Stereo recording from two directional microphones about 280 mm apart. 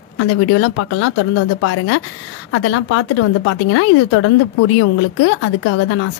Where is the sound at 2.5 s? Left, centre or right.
Left.